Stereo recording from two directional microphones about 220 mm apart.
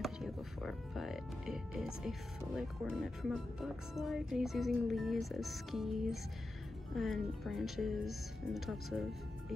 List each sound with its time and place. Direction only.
0.0 s speech: centre (ahead or behind)